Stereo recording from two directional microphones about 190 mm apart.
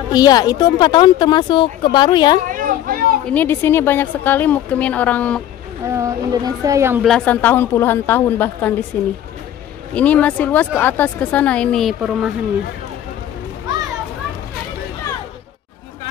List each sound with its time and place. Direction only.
0.1 s speech: 20° left (ahead or behind)
2.4 s a sound: 45° right (ahead or behind)
3.3 s speech: 10° left (ahead or behind)
5.9 s speech: 15° right (ahead or behind)
7.1 s speech: 5° left (ahead or behind)
9.9 s speech: 5° left (ahead or behind)